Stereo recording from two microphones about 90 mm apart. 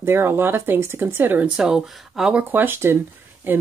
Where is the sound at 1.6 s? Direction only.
5° right (ahead or behind).